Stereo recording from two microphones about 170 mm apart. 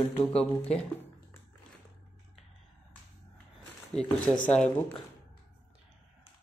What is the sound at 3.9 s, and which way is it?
Speech, 5° left (ahead or behind).